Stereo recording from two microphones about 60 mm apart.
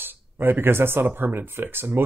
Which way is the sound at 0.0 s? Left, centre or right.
Right.